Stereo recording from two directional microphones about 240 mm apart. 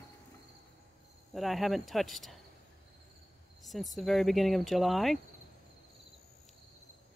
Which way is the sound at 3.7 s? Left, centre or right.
Centre.